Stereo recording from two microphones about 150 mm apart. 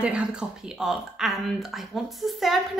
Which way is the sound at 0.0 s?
5° right (ahead or behind).